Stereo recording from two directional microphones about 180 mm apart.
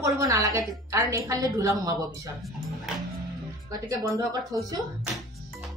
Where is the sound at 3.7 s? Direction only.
20° right (ahead or behind).